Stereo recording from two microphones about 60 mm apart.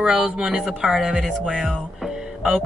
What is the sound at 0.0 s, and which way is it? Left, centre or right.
Speech, centre.